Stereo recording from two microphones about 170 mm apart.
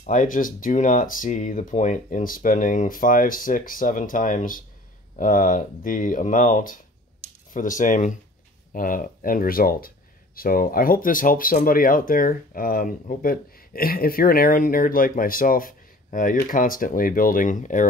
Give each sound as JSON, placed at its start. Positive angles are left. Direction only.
{"t": 0.0, "sound": "speech", "side_deg": 50}